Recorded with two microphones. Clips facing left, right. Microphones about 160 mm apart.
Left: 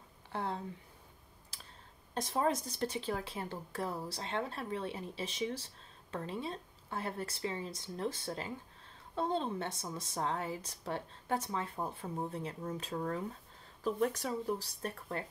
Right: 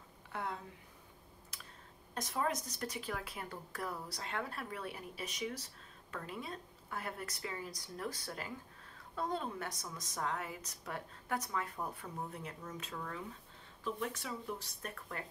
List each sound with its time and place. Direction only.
0.3 s a sound: 30° left (ahead or behind)
1.5 s clicking: 30° left (ahead or behind)
2.1 s a woman's voice: 30° left (ahead or behind)